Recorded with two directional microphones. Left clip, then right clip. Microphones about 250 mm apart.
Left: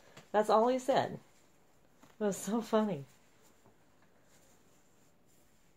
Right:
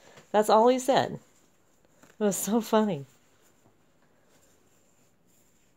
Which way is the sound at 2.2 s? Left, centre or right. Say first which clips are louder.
Right 8 dB; right.